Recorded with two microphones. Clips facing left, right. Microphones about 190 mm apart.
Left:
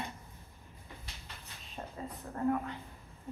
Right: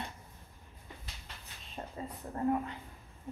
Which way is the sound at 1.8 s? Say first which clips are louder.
Right 1 dB; 5° right (ahead or behind).